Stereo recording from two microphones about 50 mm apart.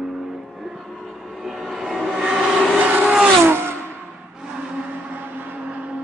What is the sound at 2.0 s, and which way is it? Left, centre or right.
Vehicle, centre.